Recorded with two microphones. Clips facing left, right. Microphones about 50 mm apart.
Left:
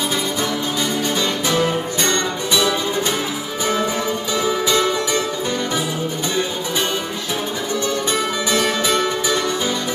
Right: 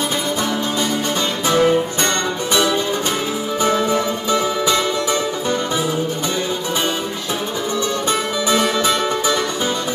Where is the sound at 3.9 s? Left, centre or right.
Right.